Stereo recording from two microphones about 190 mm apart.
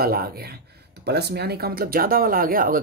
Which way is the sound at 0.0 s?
50° right (ahead or behind).